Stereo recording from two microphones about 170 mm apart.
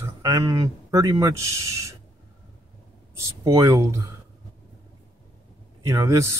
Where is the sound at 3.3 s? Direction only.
20° right (ahead or behind).